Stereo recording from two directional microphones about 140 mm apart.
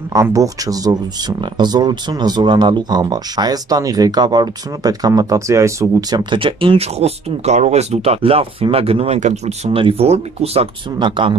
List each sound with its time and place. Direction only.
0.1 s speech: 25° right (ahead or behind); by 10.7 s 45° right (ahead or behind)
11.0 s speech: 35° right (ahead or behind)